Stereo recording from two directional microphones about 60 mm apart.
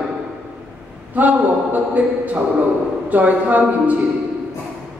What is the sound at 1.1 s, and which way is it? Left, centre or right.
A man's voice, right.